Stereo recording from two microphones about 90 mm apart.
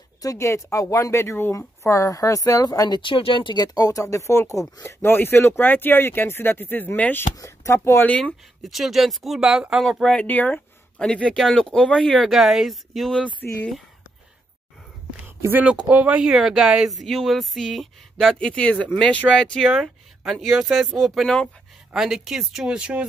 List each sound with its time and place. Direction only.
0.2 s speech: 35° left (ahead or behind)
3.0 s speech: 80° left; by 7.2 s 20° left (ahead or behind)
7.3 s speech: 35° left (ahead or behind)
8.1 s speech: 10° left (ahead or behind)
8.6 s speech: centre (ahead or behind)
10.1 s speech: 20° left (ahead or behind)
12.3 s speech: centre (ahead or behind)
15.6 s speech: 15° right (ahead or behind); by 19.8 s 10° left (ahead or behind)
20.6 s speech: 5° right (ahead or behind)